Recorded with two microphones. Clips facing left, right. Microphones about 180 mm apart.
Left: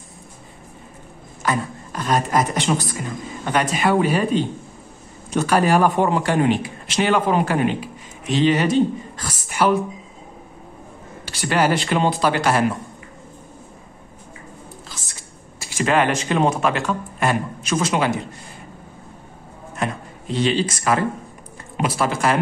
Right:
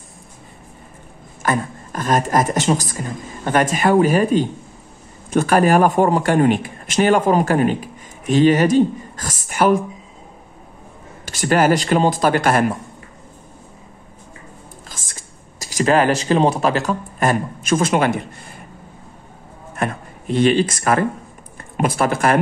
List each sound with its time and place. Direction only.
1.4 s a woman's voice: 50° right (ahead or behind)
11.2 s speech: 45° right (ahead or behind)
15.6 s speech: 40° right (ahead or behind)
19.7 s a sound: 55° right (ahead or behind)
21.7 s speech: 50° right (ahead or behind)